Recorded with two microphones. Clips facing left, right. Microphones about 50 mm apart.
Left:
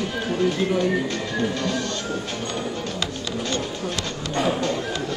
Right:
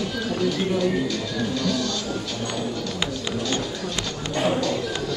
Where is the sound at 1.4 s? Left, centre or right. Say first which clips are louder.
Even; left.